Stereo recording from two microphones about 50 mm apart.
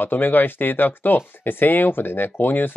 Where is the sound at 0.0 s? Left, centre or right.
Left.